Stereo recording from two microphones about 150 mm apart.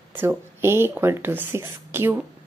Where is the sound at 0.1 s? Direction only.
15° right (ahead or behind).